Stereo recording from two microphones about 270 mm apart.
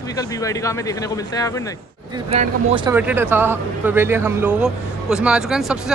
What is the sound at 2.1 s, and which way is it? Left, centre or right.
Speech, right.